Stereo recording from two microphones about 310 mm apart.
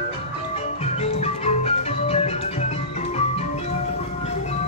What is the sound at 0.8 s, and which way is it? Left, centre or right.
Music, centre.